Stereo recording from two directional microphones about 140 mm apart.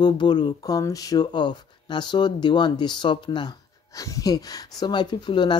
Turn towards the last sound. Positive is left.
turn(degrees=35)  # may be behind; listen again after turning